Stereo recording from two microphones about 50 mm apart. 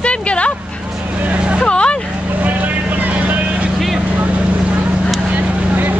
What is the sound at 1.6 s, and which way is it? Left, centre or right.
Vehicle, left.